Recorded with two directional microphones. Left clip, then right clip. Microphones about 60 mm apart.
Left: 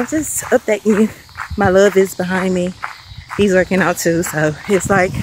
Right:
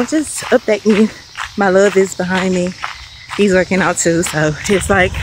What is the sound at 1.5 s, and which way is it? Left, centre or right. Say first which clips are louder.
Speech: even; left.